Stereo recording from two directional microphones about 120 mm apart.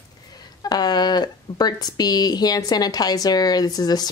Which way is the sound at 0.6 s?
35° left (ahead or behind).